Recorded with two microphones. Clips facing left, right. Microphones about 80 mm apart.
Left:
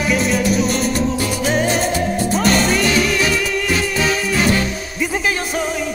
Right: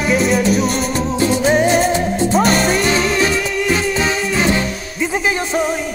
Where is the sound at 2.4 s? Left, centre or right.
Centre.